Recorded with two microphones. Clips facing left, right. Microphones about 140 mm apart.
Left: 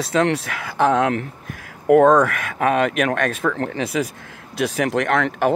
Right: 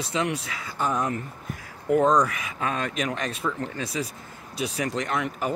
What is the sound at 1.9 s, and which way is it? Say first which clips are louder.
Speech: left 8 dB; 60° left (ahead or behind).